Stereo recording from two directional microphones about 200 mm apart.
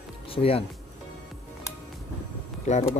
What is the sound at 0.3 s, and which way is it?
Speech, 30° left (ahead or behind).